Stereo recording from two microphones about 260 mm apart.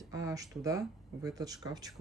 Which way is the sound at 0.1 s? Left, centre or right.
Centre.